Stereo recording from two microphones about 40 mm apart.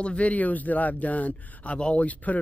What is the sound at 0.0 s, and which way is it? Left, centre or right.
Speech, left.